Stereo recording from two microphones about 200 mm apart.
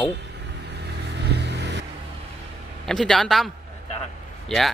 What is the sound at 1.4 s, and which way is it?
Vehicle, 60° right (ahead or behind).